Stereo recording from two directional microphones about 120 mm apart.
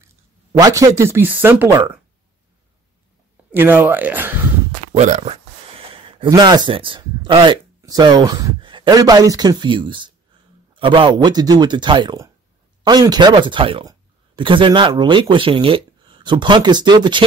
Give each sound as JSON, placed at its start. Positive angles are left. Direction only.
{"t": 0.0, "sound": "speech", "side_deg": -30}
{"t": 3.5, "sound": "speech", "side_deg": -15}
{"t": 4.9, "sound": "speech", "side_deg": -75}
{"t": 5.3, "sound": "a sound", "side_deg": -45}
{"t": 7.8, "sound": "speech", "side_deg": -35}